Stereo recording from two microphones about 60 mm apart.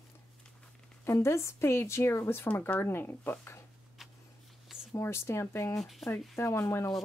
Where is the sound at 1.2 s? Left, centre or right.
Left.